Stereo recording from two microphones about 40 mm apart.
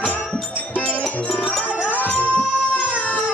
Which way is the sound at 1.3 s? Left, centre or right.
Left.